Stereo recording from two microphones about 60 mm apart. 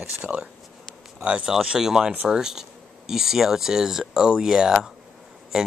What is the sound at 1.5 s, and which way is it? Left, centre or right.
Speech, centre.